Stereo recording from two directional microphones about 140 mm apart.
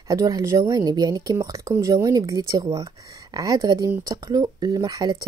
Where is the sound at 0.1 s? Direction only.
25° right (ahead or behind).